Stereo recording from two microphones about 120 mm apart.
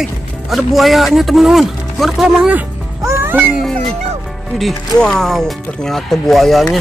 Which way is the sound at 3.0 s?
20° right (ahead or behind).